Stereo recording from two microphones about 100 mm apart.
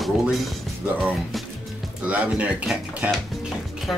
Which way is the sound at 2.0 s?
15° right (ahead or behind).